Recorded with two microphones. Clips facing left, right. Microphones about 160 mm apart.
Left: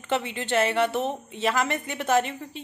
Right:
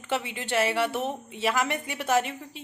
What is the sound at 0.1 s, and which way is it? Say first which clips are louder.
A woman's voice: left 3 dB; 10° right (ahead or behind).